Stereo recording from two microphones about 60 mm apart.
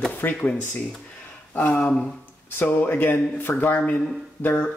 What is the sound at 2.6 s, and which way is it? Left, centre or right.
Speech, left.